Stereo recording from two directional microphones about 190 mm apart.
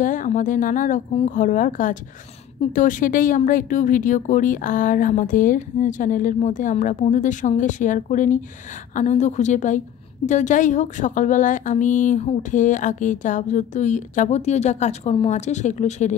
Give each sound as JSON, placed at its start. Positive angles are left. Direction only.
{"t": 0.0, "sound": "a woman's voice", "side_deg": 45}